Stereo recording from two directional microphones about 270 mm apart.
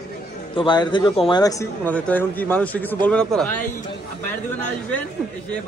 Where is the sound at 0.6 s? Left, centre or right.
Centre.